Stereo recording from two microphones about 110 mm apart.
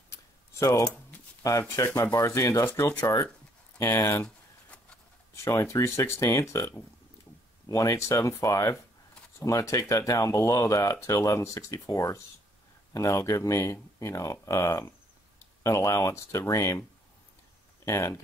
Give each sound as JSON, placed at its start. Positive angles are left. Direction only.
{"t": 0.1, "sound": "a sound", "side_deg": 30}
{"t": 1.4, "sound": "speech", "side_deg": 30}
{"t": 5.4, "sound": "speech", "side_deg": 25}
{"t": 17.8, "sound": "speech", "side_deg": 25}